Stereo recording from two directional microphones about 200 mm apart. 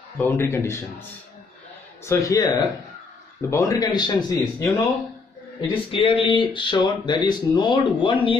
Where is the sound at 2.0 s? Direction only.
15° left (ahead or behind).